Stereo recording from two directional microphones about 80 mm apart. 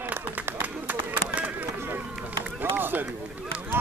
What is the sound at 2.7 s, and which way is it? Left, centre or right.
Run, right.